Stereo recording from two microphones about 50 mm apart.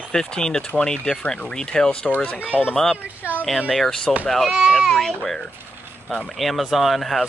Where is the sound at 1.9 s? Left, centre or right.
Left.